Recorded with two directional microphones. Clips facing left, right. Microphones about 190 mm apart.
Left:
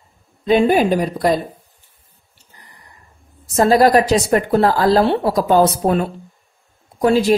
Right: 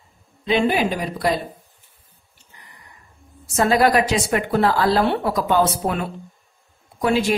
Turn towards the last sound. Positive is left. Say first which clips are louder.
# left 5 dB
turn(degrees=40)  # may be behind; listen again after turning